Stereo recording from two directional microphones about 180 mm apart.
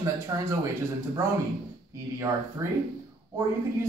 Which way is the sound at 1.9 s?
15° right (ahead or behind).